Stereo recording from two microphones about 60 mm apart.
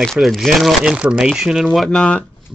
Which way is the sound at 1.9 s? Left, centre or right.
Centre.